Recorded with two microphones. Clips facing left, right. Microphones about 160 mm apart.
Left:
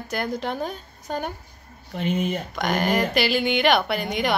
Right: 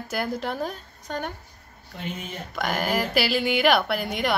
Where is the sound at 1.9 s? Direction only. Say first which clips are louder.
Left 10 dB; 75° left (ahead or behind).